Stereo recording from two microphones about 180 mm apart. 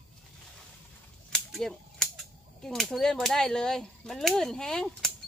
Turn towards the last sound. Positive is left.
turn(degrees=5)  # may be behind; listen again after turning